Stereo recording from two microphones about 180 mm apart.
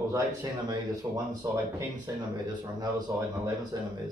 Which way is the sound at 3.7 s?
20° right (ahead or behind).